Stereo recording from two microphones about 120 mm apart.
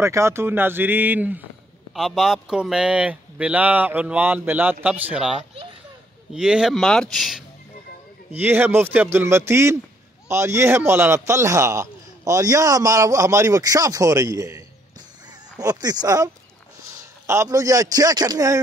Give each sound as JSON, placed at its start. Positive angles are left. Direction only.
{"t": 0.0, "sound": "speech", "side_deg": -25}
{"t": 2.0, "sound": "speech", "side_deg": 0}
{"t": 8.4, "sound": "a man's voice", "side_deg": -15}
{"t": 15.6, "sound": "speech", "side_deg": -30}
{"t": 17.3, "sound": "a man's voice", "side_deg": -25}